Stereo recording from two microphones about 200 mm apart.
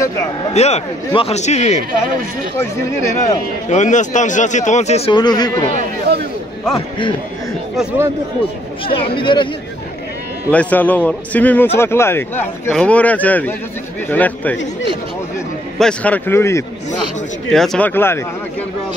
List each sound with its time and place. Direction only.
0.5 s a man's voice: 35° left (ahead or behind)
3.6 s a man's voice: 35° left (ahead or behind); by 5.7 s 20° left (ahead or behind)
6.1 s a man's voice: 55° right (ahead or behind)
7.7 s speech: 5° right (ahead or behind)
8.8 s speech: 25° left (ahead or behind)
10.5 s a man's voice: 5° left (ahead or behind)
15.8 s a man's voice: 5° left (ahead or behind)
17.5 s a man's voice: centre (ahead or behind)